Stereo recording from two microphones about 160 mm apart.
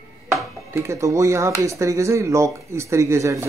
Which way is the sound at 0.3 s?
15° right (ahead or behind).